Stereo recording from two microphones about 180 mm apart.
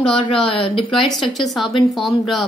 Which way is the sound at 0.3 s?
30° left (ahead or behind).